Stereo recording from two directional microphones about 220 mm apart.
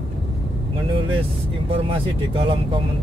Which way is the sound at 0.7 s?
25° right (ahead or behind).